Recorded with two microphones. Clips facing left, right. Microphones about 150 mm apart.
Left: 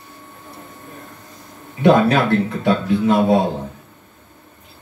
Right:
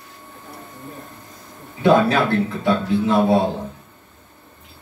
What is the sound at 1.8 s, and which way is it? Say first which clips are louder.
Speech: left 2 dB; 20° left (ahead or behind).